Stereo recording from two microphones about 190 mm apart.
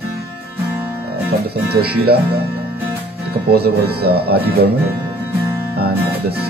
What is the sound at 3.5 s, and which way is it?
Speech, 55° right (ahead or behind).